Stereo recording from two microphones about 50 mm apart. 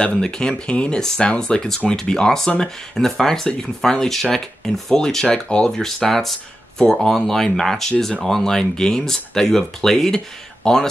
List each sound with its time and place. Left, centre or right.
0.2 s speech: centre